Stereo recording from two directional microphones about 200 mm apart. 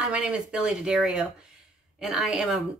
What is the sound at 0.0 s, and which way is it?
Speech, 5° right (ahead or behind).